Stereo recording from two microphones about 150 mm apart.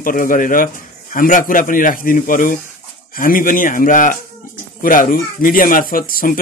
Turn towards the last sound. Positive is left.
turn(degrees=70)  # may be behind; listen again after turning